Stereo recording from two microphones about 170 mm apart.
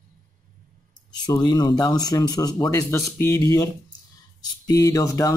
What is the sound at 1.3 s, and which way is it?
Speech, 25° left (ahead or behind).